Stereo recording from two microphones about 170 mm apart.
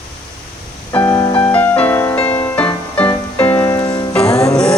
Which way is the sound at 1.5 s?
10° left (ahead or behind).